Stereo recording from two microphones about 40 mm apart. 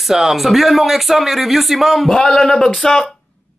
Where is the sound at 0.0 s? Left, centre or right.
Centre.